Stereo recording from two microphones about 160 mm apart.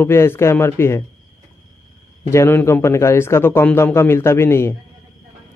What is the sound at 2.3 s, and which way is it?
A man's voice, 15° left (ahead or behind).